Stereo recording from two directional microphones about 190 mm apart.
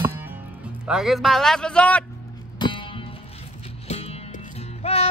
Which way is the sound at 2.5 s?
25° left (ahead or behind).